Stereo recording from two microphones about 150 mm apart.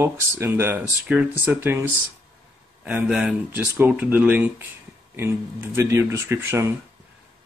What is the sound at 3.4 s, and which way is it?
Speech, 15° right (ahead or behind).